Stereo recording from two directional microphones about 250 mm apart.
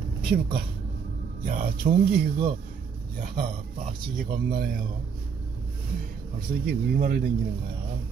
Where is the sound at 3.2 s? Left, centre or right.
Right.